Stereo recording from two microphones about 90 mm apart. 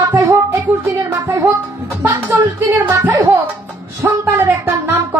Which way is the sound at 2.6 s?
25° right (ahead or behind).